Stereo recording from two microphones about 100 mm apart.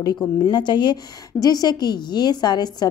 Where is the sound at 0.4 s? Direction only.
55° left (ahead or behind).